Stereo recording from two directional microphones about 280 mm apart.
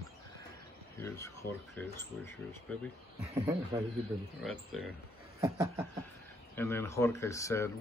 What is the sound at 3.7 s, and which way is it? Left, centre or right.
Snicker, centre.